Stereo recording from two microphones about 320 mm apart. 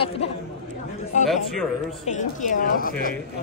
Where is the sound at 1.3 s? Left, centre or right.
Centre.